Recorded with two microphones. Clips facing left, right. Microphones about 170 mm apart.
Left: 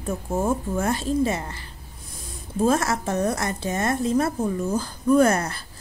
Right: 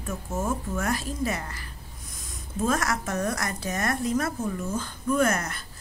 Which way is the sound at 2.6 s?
30° left (ahead or behind).